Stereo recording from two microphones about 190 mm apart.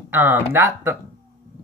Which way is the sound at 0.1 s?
10° right (ahead or behind).